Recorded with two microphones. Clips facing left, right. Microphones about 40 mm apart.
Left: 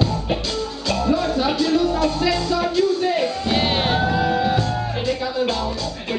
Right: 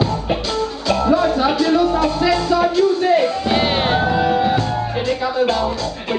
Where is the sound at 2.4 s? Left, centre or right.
Centre.